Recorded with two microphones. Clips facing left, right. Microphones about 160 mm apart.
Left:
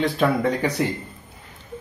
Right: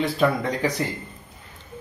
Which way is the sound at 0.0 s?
Centre (ahead or behind).